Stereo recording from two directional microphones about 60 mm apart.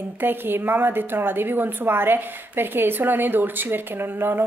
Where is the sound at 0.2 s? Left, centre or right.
Right.